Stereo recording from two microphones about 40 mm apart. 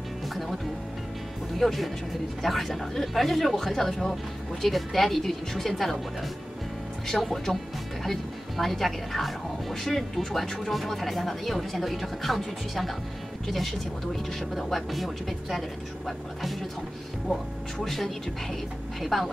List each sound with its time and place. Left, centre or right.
1.6 s speech: centre
7.1 s speech: centre
17.3 s speech: centre